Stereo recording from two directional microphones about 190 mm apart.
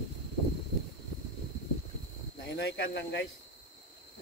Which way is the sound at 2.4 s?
70° left (ahead or behind).